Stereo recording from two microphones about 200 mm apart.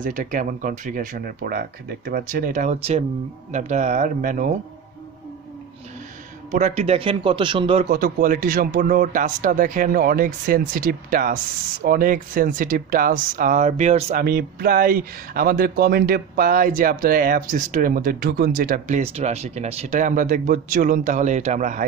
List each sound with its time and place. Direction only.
0.0 s speech: 40° right (ahead or behind)
6.5 s a man's voice: 35° right (ahead or behind)
7.9 s speech: 45° right (ahead or behind)
14.2 s speech: 50° right (ahead or behind)